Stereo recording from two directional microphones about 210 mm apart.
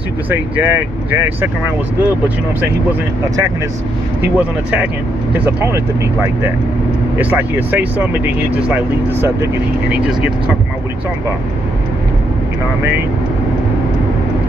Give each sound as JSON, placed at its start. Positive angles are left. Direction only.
{"t": 0.3, "sound": "speech", "side_deg": -10}
{"t": 4.4, "sound": "speech", "side_deg": -5}
{"t": 7.2, "sound": "speech", "side_deg": -10}